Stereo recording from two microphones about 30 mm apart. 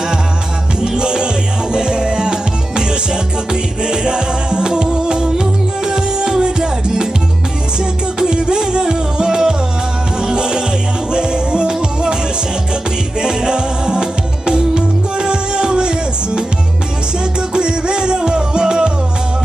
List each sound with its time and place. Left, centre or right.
0.9 s music: right
8.2 s music: right
13.2 s music: right
17.6 s music: right